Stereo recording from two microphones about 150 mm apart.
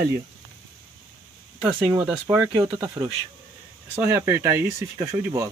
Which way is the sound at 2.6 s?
15° right (ahead or behind).